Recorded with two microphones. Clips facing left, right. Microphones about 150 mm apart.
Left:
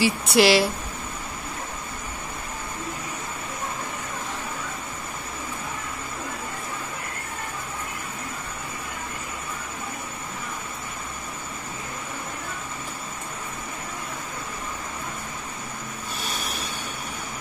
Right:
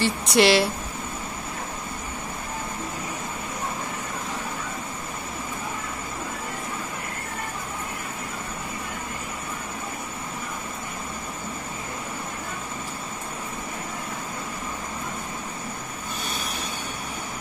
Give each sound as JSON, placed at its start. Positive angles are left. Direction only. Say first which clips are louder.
{"t": 0.0, "sound": "speech", "louder": "left 1 dB", "side_deg": 0}